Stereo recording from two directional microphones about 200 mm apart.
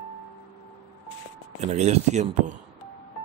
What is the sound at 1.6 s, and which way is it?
Speech, 35° right (ahead or behind).